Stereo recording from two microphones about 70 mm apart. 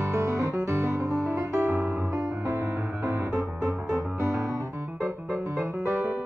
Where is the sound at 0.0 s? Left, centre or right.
Right.